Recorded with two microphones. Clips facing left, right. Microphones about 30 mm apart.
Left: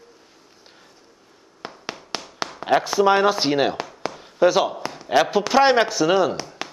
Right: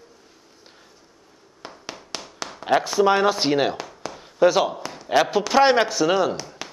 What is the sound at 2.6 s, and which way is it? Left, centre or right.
Speech, centre.